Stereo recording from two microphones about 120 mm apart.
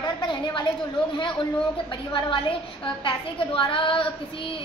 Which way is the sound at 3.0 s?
45° left (ahead or behind).